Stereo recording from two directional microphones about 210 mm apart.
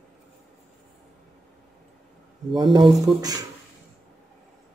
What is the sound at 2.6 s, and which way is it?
Speech, 20° right (ahead or behind).